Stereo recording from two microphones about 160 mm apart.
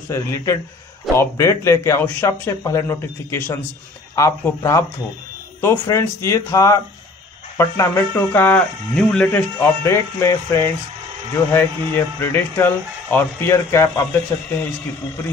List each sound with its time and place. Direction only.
0.1 s speech: 15° left (ahead or behind)